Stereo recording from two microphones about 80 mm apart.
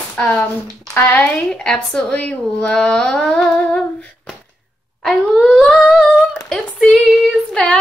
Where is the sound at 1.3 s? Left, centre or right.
Centre.